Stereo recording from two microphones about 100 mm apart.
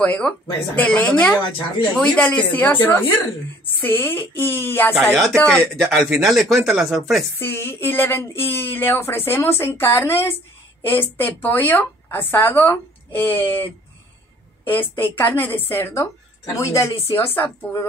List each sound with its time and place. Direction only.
0.0 s speech: 15° left (ahead or behind)
5.4 s speech: 5° left (ahead or behind)
7.3 s speech: 20° left (ahead or behind)